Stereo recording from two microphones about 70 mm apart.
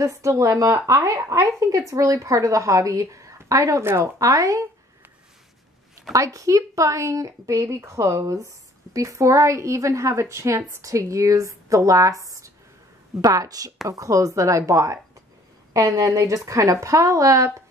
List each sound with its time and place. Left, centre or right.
0.0 s a woman's voice: right
6.1 s a woman's voice: right